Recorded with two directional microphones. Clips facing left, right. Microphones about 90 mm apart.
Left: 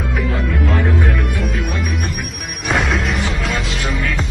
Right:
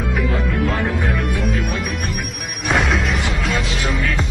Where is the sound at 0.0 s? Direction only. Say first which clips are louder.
Even; centre (ahead or behind).